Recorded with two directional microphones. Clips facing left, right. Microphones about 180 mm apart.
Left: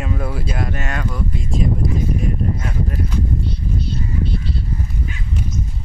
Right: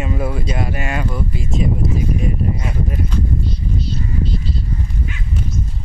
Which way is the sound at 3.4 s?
60° left (ahead or behind).